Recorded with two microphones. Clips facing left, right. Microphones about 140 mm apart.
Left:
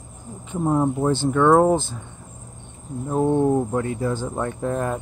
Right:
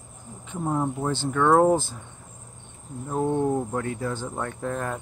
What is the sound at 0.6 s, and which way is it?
Speech, 25° left (ahead or behind).